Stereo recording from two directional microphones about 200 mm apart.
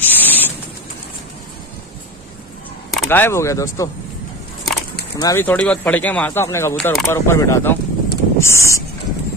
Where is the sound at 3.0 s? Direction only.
10° left (ahead or behind).